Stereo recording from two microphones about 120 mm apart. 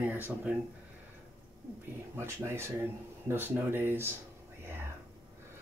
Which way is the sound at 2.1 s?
20° right (ahead or behind).